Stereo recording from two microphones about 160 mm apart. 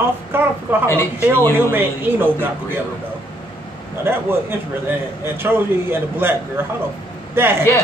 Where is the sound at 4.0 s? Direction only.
15° right (ahead or behind).